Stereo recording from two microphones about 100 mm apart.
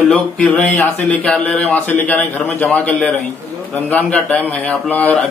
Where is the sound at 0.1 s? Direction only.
10° left (ahead or behind).